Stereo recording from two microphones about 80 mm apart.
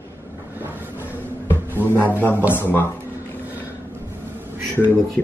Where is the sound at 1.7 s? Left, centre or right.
Left.